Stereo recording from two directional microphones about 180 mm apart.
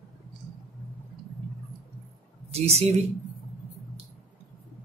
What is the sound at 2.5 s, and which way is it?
Speech, 35° right (ahead or behind).